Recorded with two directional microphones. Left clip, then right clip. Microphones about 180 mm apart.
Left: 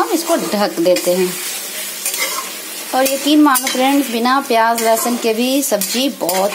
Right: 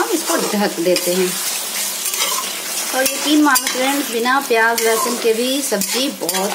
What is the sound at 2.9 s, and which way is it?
A woman's voice, 15° left (ahead or behind).